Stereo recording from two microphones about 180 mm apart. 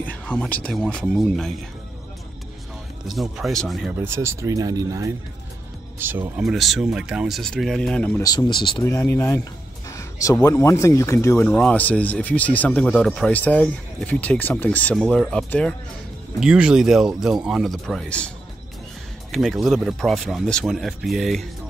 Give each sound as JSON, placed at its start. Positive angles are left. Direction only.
{"t": 0.0, "sound": "a sound", "side_deg": 10}
{"t": 0.7, "sound": "speech", "side_deg": 5}
{"t": 3.1, "sound": "speech", "side_deg": 0}
{"t": 4.0, "sound": "speech", "side_deg": -15}
{"t": 8.2, "sound": "speech", "side_deg": 20}
{"t": 8.8, "sound": "speech", "side_deg": 15}
{"t": 19.3, "sound": "speech", "side_deg": 0}